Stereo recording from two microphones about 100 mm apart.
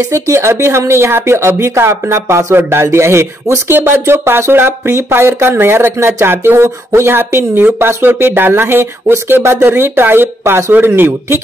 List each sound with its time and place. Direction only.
0.0 s speech: 30° right (ahead or behind)